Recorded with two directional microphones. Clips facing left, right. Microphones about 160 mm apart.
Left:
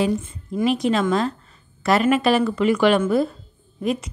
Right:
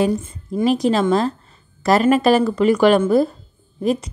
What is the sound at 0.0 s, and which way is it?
A woman's voice, 40° right (ahead or behind).